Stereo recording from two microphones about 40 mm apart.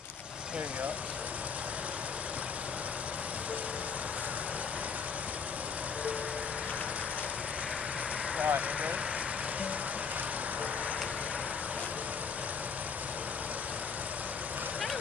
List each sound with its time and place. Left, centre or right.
8.4 s vehicle: right